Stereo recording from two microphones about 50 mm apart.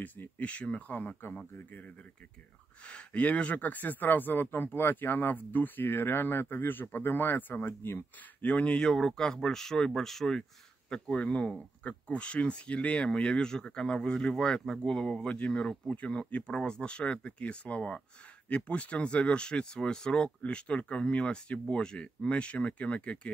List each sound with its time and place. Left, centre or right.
0.4 s speech: left
2.9 s speech: left
8.4 s speech: left; by 10.4 s centre
10.9 s speech: left